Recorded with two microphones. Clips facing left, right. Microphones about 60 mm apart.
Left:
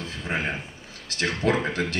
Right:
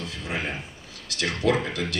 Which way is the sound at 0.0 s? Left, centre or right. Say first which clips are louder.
Left 2 dB; left.